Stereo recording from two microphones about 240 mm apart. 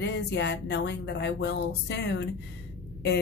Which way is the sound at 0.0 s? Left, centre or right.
Left.